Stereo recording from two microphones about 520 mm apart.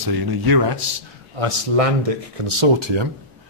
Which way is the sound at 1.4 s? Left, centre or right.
Right.